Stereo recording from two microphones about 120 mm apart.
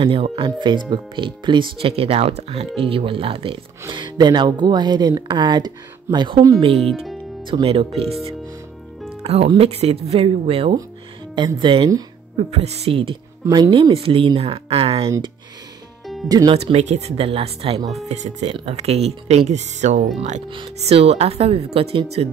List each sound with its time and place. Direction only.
0.0 s speech: 45° right (ahead or behind)
2.8 s speech: 50° right (ahead or behind)
3.9 s speech: 40° right (ahead or behind)
6.8 s speech: centre (ahead or behind)
7.4 s speech: 50° right (ahead or behind)
9.2 s a woman's voice: 60° right (ahead or behind)
11.3 s speech: 45° right (ahead or behind)
12.4 s a woman's voice: 55° right (ahead or behind)
16.3 s speech: 35° right (ahead or behind)
16.5 s a woman's voice: 60° right (ahead or behind)
18.0 s speech: 70° right (ahead or behind)
20.4 s a woman's voice: 45° right (ahead or behind)